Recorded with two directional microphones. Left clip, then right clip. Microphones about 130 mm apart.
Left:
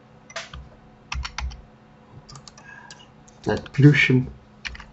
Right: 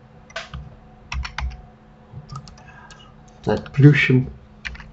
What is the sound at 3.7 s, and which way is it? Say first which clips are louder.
Speech: right 1 dB; 5° left (ahead or behind).